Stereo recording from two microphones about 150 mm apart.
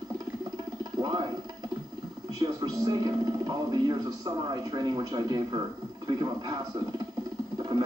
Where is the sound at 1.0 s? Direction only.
25° right (ahead or behind).